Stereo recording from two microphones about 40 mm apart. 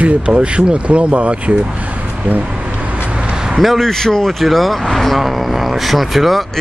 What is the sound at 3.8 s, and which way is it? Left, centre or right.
Speech, centre.